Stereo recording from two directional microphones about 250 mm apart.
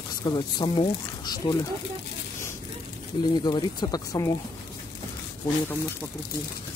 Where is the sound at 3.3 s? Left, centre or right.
Centre.